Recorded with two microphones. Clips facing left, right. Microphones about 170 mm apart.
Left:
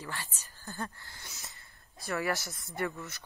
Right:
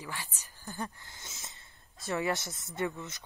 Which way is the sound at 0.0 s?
10° right (ahead or behind).